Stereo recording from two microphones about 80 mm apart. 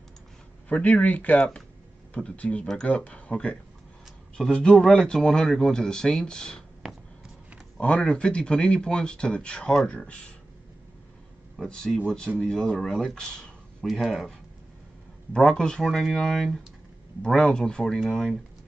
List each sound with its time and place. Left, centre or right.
0.7 s speech: centre
7.7 s speech: centre
11.5 s speech: centre
15.3 s speech: centre